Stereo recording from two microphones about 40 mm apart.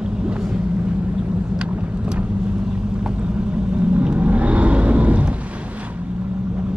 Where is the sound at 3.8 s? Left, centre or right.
Right.